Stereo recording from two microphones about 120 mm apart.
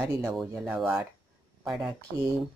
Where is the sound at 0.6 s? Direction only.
5° right (ahead or behind).